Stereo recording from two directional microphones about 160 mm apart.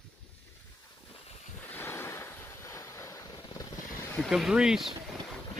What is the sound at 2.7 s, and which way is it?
Vehicle, 15° left (ahead or behind).